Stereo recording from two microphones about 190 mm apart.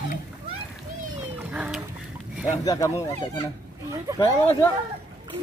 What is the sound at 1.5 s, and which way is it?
Chicken, 5° right (ahead or behind).